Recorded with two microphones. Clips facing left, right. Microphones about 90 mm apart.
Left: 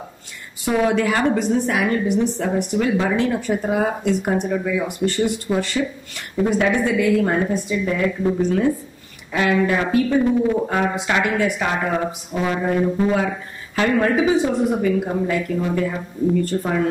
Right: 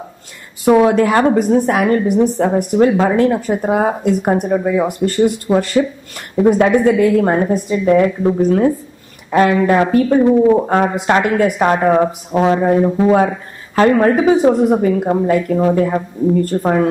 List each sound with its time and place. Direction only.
0.7 s a woman's voice: 45° right (ahead or behind)